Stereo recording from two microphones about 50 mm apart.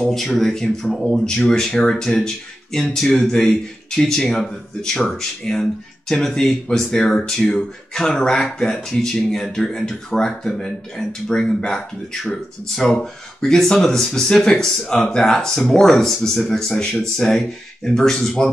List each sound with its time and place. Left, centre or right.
0.0 s speech: centre